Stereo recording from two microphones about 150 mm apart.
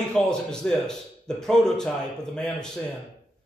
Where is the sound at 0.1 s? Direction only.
5° left (ahead or behind).